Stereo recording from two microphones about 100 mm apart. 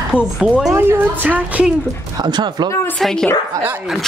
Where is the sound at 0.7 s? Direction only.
20° right (ahead or behind).